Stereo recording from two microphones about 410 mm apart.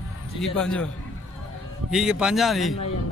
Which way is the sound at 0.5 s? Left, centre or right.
Centre.